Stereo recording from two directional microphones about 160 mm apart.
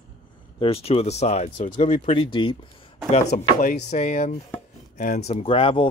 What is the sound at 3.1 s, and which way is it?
Speech, 50° left (ahead or behind).